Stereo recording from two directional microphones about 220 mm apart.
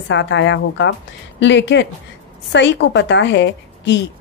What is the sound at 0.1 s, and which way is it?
A woman's voice, 55° left (ahead or behind).